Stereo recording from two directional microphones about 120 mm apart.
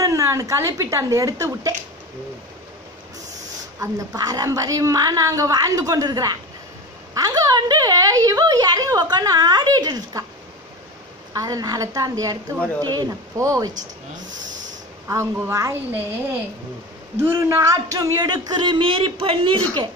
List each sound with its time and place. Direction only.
0.0 s speech: 25° right (ahead or behind)
3.8 s speech: 30° right (ahead or behind)
11.3 s speech: 30° right (ahead or behind)
15.0 s speech: 25° right (ahead or behind)
17.2 s speech: 25° right (ahead or behind); by 19.6 s 50° right (ahead or behind)